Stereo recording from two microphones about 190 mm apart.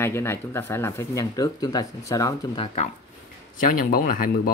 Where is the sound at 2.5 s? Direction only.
35° left (ahead or behind).